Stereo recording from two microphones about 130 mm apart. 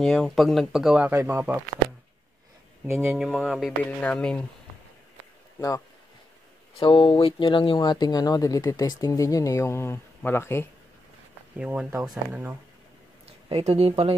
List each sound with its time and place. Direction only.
0.0 s speech: centre (ahead or behind); by 1.6 s 15° right (ahead or behind)
3.1 s speech: 5° right (ahead or behind)
6.8 s speech: 45° left (ahead or behind); by 10.7 s 20° left (ahead or behind)
11.5 s speech: 10° right (ahead or behind)
13.5 s speech: 50° right (ahead or behind)